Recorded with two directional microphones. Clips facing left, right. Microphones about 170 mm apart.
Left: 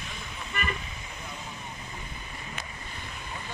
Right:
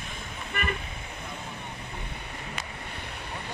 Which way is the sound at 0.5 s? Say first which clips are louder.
Right 2 dB; 55° right (ahead or behind).